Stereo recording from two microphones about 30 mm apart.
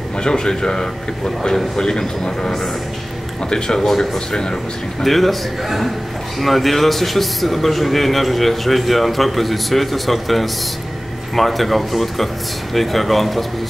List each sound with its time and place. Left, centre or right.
0.2 s a man's voice: left
3.6 s speech: centre
3.9 s speech: centre
4.3 s a man's voice: left
5.0 s a man's voice: centre